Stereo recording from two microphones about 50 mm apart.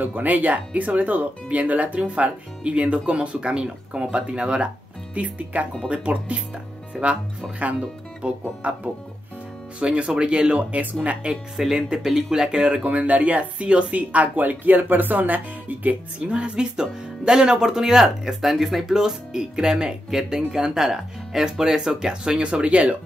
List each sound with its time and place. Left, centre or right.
0.0 s speech: right
11.2 s speech: centre
12.8 s speech: right